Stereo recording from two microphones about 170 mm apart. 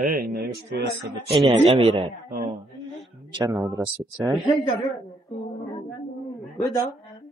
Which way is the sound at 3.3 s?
25° right (ahead or behind).